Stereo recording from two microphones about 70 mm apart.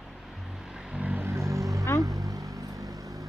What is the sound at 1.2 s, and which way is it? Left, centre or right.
Vehicle, right.